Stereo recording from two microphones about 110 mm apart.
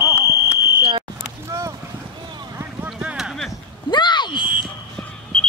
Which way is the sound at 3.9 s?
45° left (ahead or behind).